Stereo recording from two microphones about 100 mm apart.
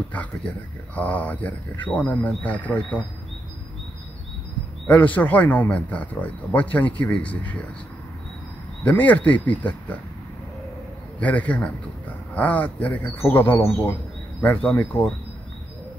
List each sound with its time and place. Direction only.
0.9 s speech: 15° left (ahead or behind)
4.8 s speech: 15° left (ahead or behind)
8.8 s speech: 15° left (ahead or behind)
11.1 s speech: 15° left (ahead or behind)